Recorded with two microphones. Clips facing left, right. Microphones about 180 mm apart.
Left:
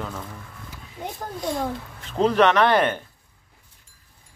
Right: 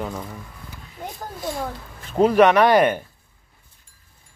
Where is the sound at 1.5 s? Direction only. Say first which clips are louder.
Left 3 dB; 5° right (ahead or behind).